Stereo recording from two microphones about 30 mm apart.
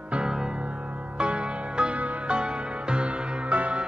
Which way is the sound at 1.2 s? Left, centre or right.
Right.